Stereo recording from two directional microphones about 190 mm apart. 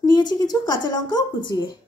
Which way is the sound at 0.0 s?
20° left (ahead or behind).